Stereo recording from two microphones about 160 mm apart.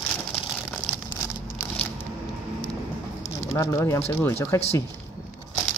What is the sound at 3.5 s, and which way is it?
Speech, 20° left (ahead or behind).